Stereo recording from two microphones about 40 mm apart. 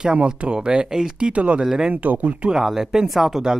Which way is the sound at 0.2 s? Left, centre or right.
Right.